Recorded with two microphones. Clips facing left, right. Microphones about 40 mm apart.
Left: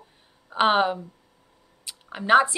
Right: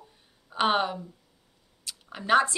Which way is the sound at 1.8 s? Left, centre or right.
Centre.